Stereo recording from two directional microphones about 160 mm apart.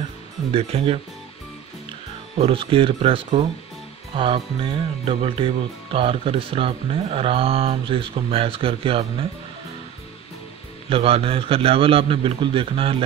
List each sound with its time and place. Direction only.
0.5 s speech: 35° right (ahead or behind)
2.3 s speech: 35° right (ahead or behind)
10.9 s speech: 35° right (ahead or behind)